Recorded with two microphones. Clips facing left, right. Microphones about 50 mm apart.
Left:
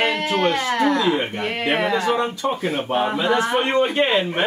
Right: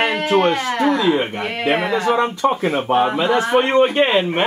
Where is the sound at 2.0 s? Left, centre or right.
Right.